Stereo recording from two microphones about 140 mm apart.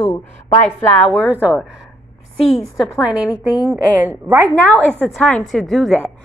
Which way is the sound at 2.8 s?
10° right (ahead or behind).